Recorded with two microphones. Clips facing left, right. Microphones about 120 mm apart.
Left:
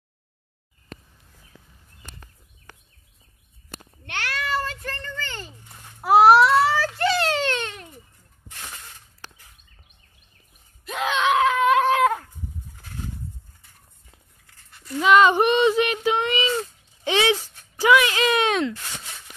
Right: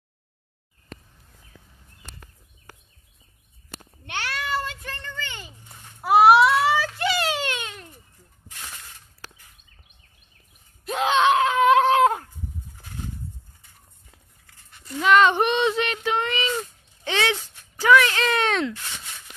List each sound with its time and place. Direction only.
4.0 s babbling: 20° right (ahead or behind)
5.9 s baby cry: centre (ahead or behind)
10.9 s screaming: 30° right (ahead or behind)
15.0 s a sound: 5° left (ahead or behind)